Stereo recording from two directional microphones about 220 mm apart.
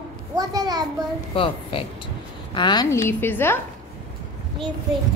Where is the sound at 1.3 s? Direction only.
25° left (ahead or behind).